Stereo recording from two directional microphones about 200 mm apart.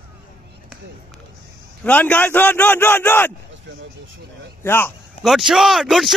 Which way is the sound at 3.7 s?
65° right (ahead or behind).